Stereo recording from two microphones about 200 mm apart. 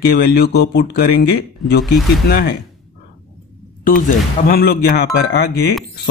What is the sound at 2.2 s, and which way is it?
Speech, 50° left (ahead or behind).